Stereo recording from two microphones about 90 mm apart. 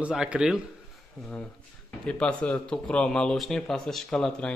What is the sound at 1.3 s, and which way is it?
Speech, 15° left (ahead or behind).